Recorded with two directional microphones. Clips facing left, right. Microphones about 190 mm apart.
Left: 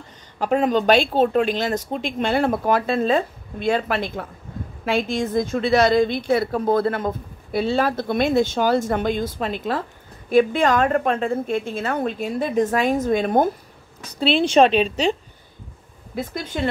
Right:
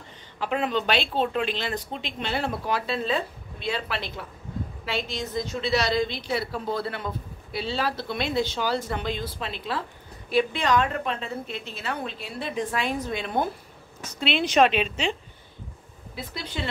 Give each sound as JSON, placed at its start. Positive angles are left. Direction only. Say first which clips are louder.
{"t": 0.4, "sound": "a woman's voice", "louder": "left 7 dB", "side_deg": 45}
{"t": 14.0, "sound": "a woman's voice", "louder": "left 7 dB", "side_deg": 35}
{"t": 16.2, "sound": "a woman's voice", "louder": "left 7 dB", "side_deg": 45}